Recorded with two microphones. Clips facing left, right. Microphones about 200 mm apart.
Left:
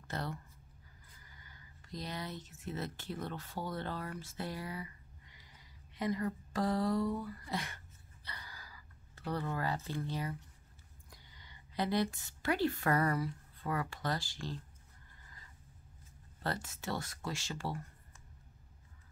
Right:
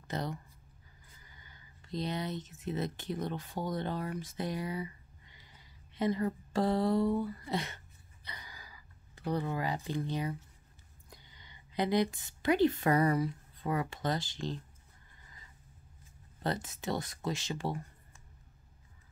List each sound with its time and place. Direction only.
0.1 s a woman's voice: 15° right (ahead or behind)
16.4 s speech: 20° right (ahead or behind)